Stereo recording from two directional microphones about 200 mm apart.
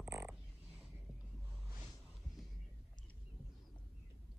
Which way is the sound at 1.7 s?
Centre (ahead or behind).